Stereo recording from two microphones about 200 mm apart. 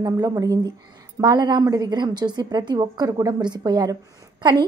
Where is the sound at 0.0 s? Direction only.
20° right (ahead or behind).